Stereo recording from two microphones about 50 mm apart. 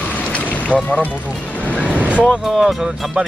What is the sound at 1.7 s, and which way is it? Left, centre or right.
Speech, right.